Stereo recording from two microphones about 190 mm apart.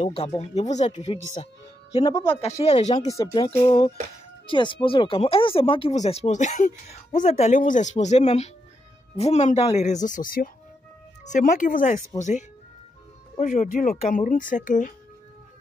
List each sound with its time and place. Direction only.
0.0 s speech: 30° left (ahead or behind)
3.1 s speech: 15° left (ahead or behind)
3.4 s speech: 30° left (ahead or behind); by 15.0 s 45° left (ahead or behind)